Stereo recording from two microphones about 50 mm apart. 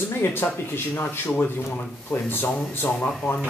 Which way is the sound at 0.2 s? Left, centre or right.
Left.